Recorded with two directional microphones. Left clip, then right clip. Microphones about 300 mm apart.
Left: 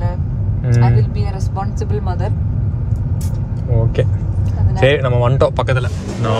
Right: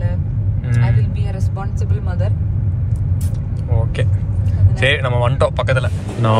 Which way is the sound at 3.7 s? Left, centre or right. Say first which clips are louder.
Left 5 dB; centre.